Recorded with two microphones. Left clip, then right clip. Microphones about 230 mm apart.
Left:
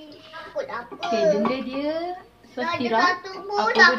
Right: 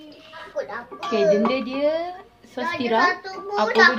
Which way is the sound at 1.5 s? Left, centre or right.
Right.